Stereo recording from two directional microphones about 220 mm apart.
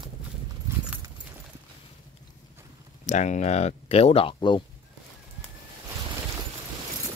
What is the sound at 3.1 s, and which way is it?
Speech, 35° left (ahead or behind).